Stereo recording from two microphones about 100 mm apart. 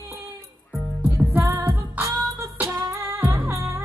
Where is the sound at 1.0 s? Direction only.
25° right (ahead or behind).